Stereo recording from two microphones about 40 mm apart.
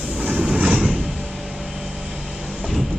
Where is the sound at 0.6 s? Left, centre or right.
Right.